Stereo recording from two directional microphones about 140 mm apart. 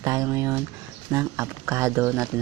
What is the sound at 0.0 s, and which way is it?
Speech, 25° right (ahead or behind).